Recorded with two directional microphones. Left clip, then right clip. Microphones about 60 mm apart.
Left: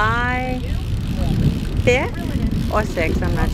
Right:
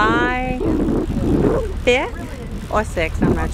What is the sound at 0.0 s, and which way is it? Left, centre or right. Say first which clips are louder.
Vehicle: right 2 dB; right.